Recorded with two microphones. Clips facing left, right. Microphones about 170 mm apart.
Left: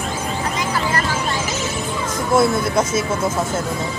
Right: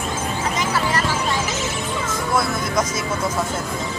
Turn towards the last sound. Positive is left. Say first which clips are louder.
# left 4 dB
turn(degrees=25)  # may be behind; listen again after turning